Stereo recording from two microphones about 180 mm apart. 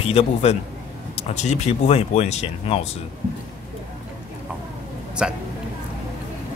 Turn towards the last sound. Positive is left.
turn(degrees=-5)  # may be behind; listen again after turning